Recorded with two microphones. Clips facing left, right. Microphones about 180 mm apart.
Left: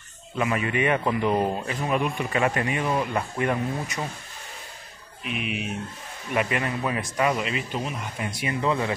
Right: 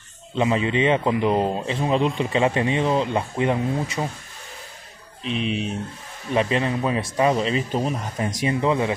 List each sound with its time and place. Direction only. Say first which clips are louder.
0.3 s a man's voice: right 4 dB; 25° right (ahead or behind)
5.2 s a man's voice: right 5 dB; 30° right (ahead or behind)
8.5 s a man's voice: right 3 dB; 20° right (ahead or behind)